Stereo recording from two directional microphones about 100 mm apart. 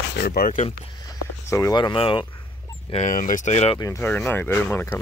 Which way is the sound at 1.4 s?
30° left (ahead or behind).